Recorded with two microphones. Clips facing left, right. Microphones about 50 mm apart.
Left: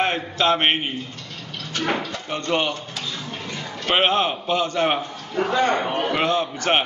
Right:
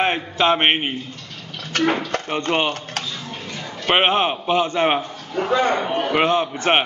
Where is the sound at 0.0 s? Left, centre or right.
Right.